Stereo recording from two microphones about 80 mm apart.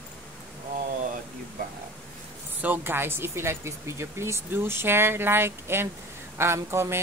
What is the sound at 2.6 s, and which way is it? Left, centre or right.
Speech, right.